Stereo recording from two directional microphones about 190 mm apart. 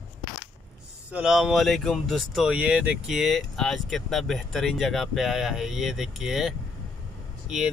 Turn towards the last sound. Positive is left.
turn(degrees=-5)  # may be behind; listen again after turning